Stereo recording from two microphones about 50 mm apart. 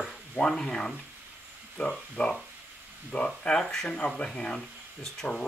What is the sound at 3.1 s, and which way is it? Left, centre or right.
Speech, left.